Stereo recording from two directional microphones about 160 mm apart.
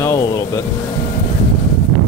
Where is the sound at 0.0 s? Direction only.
20° left (ahead or behind).